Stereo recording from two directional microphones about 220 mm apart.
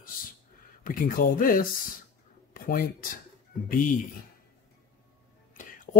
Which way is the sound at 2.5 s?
40° left (ahead or behind).